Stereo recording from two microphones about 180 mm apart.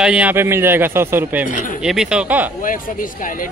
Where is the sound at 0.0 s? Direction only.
5° right (ahead or behind).